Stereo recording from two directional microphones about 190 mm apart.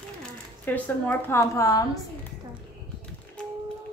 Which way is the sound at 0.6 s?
10° left (ahead or behind).